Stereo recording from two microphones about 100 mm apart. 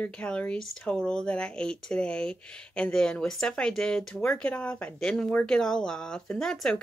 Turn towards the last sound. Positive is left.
turn(degrees=5)  # may be behind; listen again after turning